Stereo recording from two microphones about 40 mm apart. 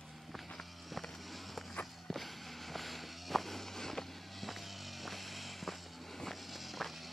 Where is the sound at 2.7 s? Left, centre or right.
Centre.